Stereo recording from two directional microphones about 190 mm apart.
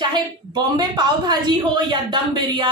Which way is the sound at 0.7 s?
20° right (ahead or behind).